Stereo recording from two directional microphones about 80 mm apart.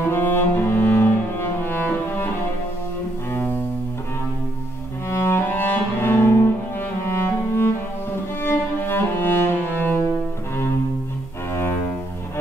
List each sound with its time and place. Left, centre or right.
0.1 s cello: left
5.1 s cello: left
7.1 s music: left